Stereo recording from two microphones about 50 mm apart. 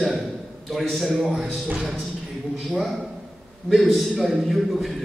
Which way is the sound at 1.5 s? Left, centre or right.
Right.